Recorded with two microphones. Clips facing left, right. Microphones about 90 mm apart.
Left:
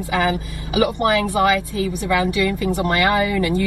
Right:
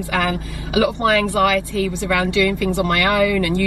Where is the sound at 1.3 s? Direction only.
15° left (ahead or behind).